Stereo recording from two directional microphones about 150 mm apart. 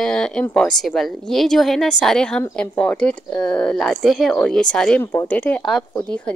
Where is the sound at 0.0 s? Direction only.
5° left (ahead or behind).